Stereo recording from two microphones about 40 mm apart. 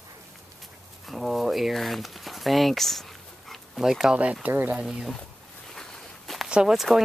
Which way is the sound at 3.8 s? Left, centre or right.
Centre.